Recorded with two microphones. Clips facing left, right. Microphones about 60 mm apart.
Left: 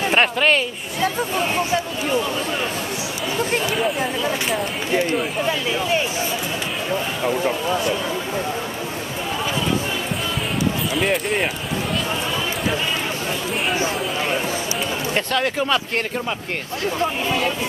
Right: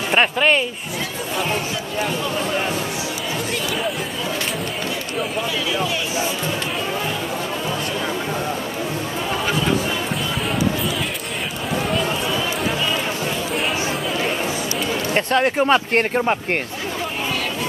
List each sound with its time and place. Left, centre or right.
0.1 s speech: centre
15.3 s speech: right